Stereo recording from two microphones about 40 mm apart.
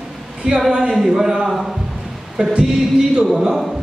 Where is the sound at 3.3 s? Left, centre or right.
Centre.